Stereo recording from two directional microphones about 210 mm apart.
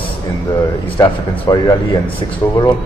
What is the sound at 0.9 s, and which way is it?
Speech, 15° left (ahead or behind).